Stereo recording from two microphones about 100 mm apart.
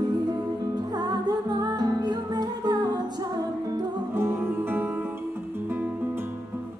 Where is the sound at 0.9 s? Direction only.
45° right (ahead or behind).